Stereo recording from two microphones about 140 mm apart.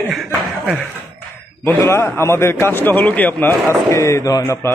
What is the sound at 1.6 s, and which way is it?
A man's voice, 20° left (ahead or behind).